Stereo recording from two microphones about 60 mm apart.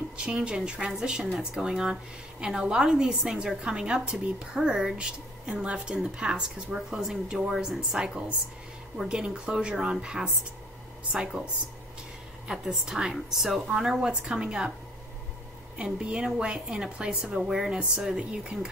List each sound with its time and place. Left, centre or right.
0.2 s a woman's voice: centre
12.4 s a woman's voice: centre
15.8 s a woman's voice: centre